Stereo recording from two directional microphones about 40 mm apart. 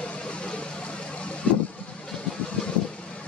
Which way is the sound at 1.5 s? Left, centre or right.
Left.